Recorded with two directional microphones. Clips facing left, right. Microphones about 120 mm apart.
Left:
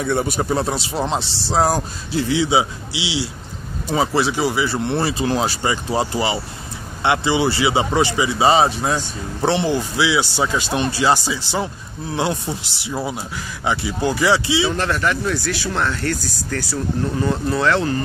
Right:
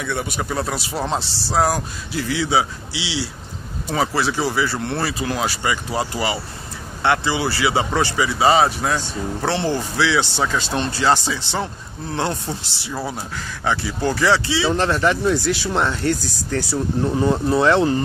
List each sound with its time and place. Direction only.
0.0 s speech: 35° left (ahead or behind); by 14.7 s 15° left (ahead or behind)
14.7 s speech: 25° right (ahead or behind)